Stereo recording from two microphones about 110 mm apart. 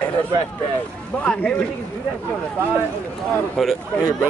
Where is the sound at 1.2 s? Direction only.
10° left (ahead or behind).